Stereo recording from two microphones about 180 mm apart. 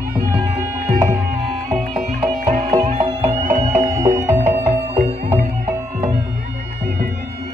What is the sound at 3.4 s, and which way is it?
Music, 40° right (ahead or behind).